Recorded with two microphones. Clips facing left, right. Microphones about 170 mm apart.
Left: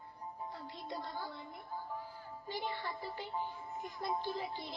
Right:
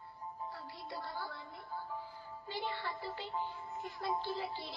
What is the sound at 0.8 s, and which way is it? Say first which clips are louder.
Music: left 1 dB; 20° left (ahead or behind).